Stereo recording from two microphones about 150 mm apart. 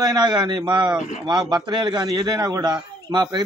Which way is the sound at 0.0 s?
30° right (ahead or behind).